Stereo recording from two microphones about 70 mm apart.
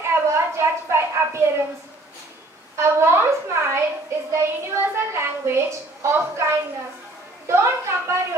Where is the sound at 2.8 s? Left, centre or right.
Right.